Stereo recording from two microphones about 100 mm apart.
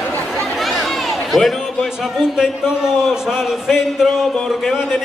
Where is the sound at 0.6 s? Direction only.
Centre (ahead or behind).